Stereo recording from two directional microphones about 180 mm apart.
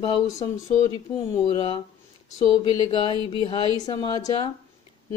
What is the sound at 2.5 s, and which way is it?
A woman's voice, 25° left (ahead or behind).